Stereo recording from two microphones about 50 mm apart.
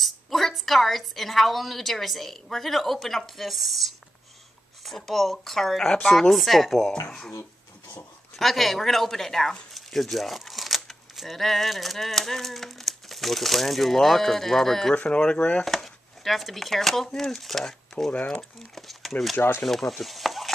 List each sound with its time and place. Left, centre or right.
0.0 s a woman's voice: centre
7.1 s speech: centre
8.4 s speech: centre
15.0 s speech: left
15.6 s speech: centre
18.1 s speech: left
18.8 s a woman's voice: centre
19.6 s stir: centre